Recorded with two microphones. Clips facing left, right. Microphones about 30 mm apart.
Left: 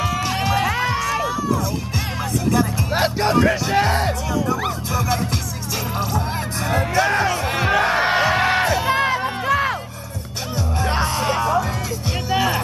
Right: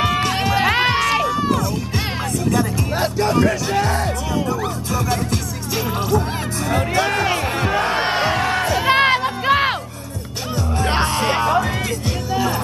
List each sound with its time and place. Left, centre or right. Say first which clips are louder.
0.0 s music: right 4 dB; right
0.3 s music: right 2 dB; centre
0.7 s crowd: right 4 dB; right
2.9 s music: left 1 dB; left
4.9 s music: right 1 dB; centre
6.7 s music: even; centre
7.4 s crowd: left 1 dB; centre
7.9 s music: left 1 dB; centre
8.4 s music: left 2 dB; centre
8.8 s music: right 4 dB; right
11.2 s music: right 1 dB; right